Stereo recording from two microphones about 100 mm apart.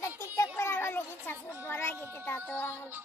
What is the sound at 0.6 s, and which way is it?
Children playing, 25° left (ahead or behind).